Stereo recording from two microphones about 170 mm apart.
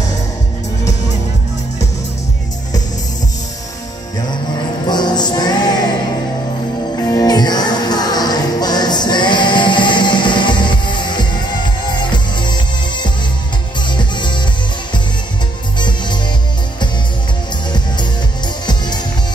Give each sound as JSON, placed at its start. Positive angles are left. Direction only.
{"t": 4.8, "sound": "music", "side_deg": 25}
{"t": 7.0, "sound": "music", "side_deg": 20}